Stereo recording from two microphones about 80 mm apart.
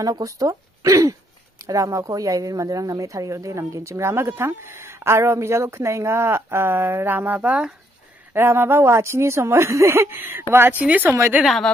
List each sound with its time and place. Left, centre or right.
0.0 s speech: right; by 7.7 s centre
8.3 s speech: right